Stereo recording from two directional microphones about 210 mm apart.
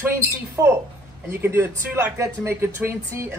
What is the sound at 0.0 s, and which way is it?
Speech, 10° right (ahead or behind).